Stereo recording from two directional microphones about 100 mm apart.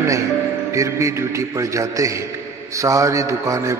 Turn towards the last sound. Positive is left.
turn(degrees=-30)  # may be behind; listen again after turning